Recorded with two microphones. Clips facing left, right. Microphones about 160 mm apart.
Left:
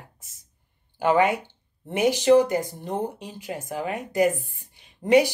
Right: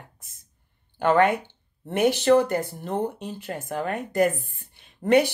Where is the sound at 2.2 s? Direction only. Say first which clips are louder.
Left 4 dB; 15° left (ahead or behind).